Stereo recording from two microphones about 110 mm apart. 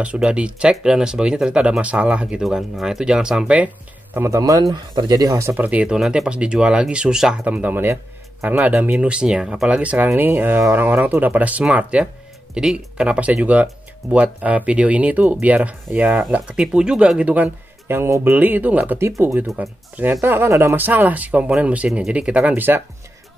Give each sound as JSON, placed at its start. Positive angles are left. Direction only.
{"t": 0.0, "sound": "speech", "side_deg": -10}
{"t": 4.4, "sound": "speech", "side_deg": -35}
{"t": 5.6, "sound": "speech", "side_deg": -15}
{"t": 18.9, "sound": "speech", "side_deg": -25}